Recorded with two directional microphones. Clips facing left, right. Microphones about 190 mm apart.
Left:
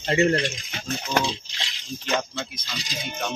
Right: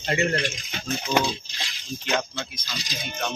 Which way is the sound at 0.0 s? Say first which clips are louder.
Left 4 dB; 30° left (ahead or behind).